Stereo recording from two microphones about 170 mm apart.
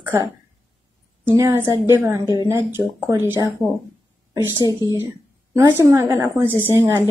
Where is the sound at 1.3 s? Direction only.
15° right (ahead or behind).